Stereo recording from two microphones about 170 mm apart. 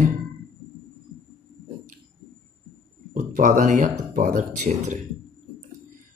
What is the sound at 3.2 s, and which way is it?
Speech, 50° right (ahead or behind).